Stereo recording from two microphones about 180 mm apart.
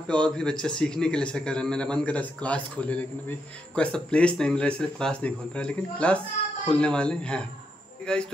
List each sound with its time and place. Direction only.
0.1 s a man's voice: 5° left (ahead or behind)